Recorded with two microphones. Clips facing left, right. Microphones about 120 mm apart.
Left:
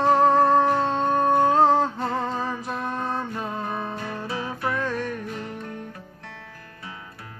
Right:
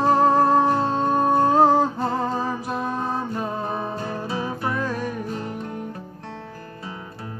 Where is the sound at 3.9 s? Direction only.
30° right (ahead or behind).